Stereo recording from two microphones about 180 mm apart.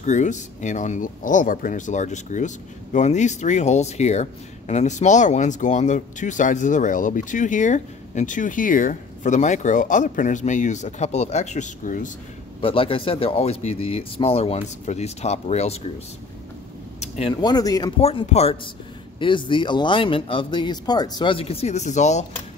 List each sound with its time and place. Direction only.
0.0 s speech: 40° left (ahead or behind)
12.6 s speech: 30° left (ahead or behind)
17.0 s a sound: 40° left (ahead or behind)
17.3 s speech: 25° left (ahead or behind)
18.0 s speech: 35° left (ahead or behind)